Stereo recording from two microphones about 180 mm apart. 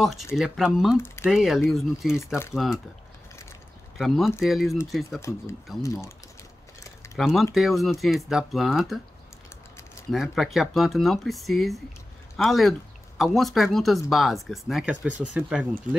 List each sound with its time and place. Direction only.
0.0 s speech: centre (ahead or behind)
0.9 s speech: 15° left (ahead or behind)
1.2 s speech: 5° right (ahead or behind)
4.0 s speech: centre (ahead or behind)
5.3 s speech: 15° left (ahead or behind)
7.2 s speech: centre (ahead or behind)
10.1 s speech: centre (ahead or behind)